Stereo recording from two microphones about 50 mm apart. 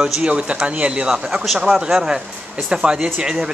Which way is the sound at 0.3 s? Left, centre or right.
Right.